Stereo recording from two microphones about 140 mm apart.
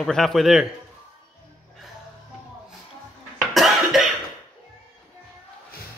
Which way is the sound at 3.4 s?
Centre (ahead or behind).